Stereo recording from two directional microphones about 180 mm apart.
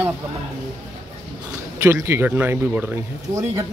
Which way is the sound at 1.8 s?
15° right (ahead or behind).